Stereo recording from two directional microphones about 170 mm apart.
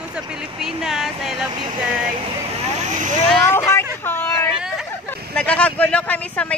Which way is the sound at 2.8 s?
45° right (ahead or behind).